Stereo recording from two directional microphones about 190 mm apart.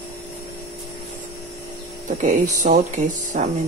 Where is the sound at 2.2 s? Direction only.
45° right (ahead or behind).